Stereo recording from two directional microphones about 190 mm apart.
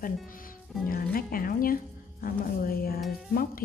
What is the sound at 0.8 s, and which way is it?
A woman's voice, 50° left (ahead or behind).